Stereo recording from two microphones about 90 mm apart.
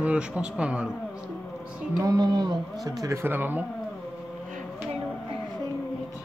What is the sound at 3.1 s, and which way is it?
Speech, 25° right (ahead or behind).